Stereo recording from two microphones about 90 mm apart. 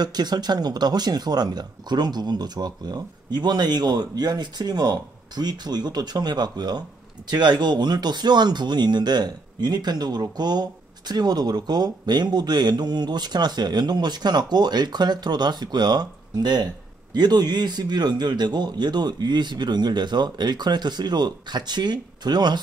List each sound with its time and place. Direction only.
0.0 s speech: 50° right (ahead or behind)